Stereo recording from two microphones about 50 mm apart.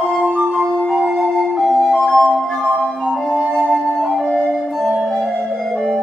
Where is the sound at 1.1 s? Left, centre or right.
Centre.